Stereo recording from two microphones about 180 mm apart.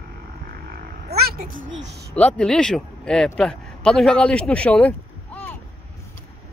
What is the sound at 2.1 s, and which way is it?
Speech, 5° left (ahead or behind).